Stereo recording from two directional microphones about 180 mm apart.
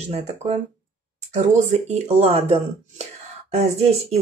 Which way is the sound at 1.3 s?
40° right (ahead or behind).